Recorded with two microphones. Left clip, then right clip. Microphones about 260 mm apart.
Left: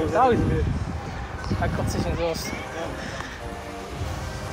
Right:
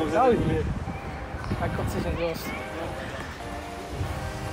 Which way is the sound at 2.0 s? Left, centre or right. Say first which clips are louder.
Left 3 dB; left.